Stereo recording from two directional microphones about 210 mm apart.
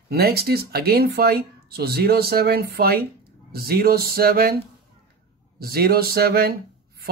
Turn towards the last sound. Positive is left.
turn(degrees=-45)  # may be behind; listen again after turning